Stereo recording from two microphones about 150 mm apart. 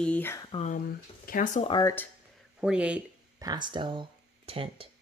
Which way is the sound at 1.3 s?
65° left (ahead or behind).